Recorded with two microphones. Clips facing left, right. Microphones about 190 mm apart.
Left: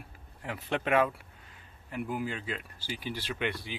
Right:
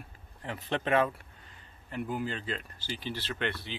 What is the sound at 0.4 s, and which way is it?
Speech, 10° left (ahead or behind).